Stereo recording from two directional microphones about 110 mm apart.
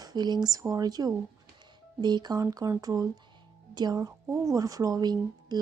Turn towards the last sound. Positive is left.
turn(degrees=-40)  # may be behind; listen again after turning